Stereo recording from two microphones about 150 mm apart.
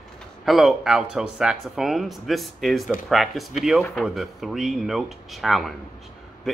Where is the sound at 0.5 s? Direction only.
Centre (ahead or behind).